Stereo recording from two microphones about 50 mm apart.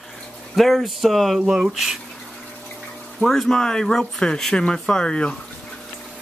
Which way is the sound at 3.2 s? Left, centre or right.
Centre.